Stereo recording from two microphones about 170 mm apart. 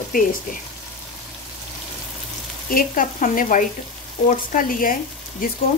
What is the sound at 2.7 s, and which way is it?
A woman's voice, 55° left (ahead or behind).